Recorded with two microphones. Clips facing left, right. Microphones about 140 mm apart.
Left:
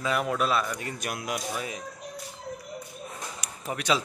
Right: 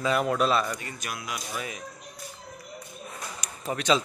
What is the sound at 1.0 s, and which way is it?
Speech, 55° left (ahead or behind).